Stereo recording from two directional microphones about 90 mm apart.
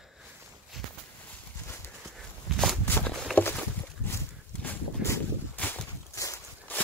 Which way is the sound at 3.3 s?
20° left (ahead or behind).